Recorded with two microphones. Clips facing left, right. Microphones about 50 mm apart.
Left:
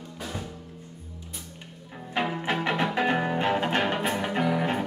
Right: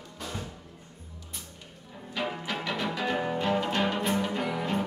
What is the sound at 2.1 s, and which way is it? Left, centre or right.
Music, left.